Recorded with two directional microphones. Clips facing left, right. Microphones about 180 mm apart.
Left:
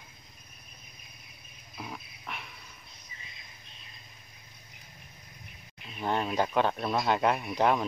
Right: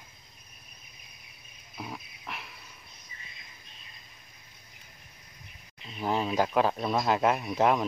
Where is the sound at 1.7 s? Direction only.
Centre (ahead or behind).